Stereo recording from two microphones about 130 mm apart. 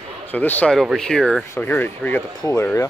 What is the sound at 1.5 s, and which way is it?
Speech, 15° left (ahead or behind).